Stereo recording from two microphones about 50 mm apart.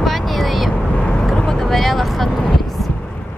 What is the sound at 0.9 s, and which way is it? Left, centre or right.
Vehicle, left.